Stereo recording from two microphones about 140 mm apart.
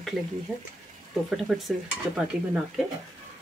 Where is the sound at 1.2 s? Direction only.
Centre (ahead or behind).